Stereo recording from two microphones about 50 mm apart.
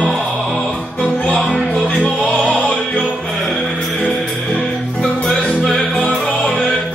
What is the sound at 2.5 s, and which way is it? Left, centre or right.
Music, left.